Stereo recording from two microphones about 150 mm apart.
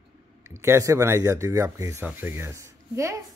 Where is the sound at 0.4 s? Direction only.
20° right (ahead or behind).